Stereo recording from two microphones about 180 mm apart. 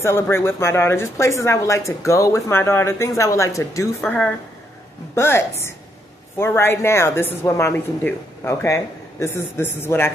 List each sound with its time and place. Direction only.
0.0 s speech: 15° left (ahead or behind)